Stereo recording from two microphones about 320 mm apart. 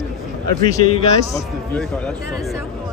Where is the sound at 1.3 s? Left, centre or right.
Centre.